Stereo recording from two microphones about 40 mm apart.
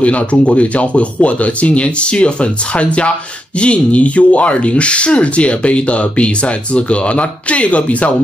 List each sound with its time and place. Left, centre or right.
0.0 s speech: left